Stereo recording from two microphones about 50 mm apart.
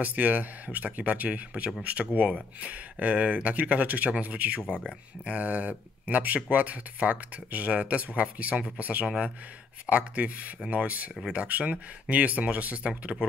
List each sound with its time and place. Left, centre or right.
0.0 s speech: right
9.0 s speech: centre
9.8 s speech: right